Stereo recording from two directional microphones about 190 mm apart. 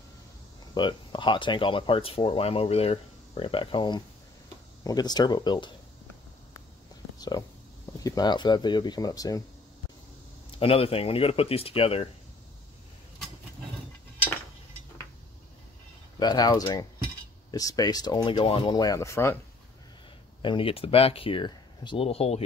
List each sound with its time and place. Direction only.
0.7 s speech: 25° left (ahead or behind)
7.2 s a sound: 20° left (ahead or behind)
8.0 s speech: 20° left (ahead or behind)
10.5 s speech: 30° left (ahead or behind)
16.2 s speech: 20° left (ahead or behind)
20.4 s speech: 30° left (ahead or behind)